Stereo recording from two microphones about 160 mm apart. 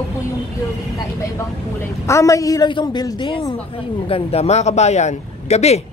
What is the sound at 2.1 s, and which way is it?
A woman's voice, 20° left (ahead or behind).